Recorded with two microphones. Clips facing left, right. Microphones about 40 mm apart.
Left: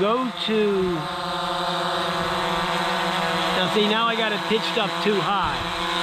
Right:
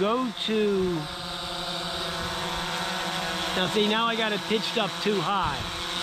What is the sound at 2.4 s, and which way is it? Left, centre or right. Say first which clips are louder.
Vehicle: left 7 dB; left.